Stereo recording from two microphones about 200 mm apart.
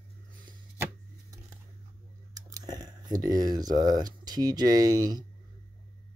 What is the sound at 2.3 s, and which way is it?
Speech, 20° right (ahead or behind).